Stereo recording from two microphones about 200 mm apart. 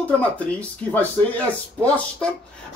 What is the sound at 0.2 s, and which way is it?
Speech, 5° left (ahead or behind).